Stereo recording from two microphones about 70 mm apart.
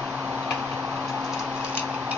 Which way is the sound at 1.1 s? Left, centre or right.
Centre.